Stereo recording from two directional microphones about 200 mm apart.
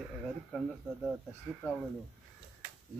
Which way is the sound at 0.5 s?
Centre (ahead or behind).